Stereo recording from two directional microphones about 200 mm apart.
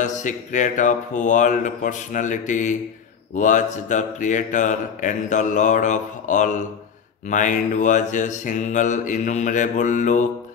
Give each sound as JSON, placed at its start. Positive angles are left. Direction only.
{"t": 0.0, "sound": "mantra", "side_deg": 40}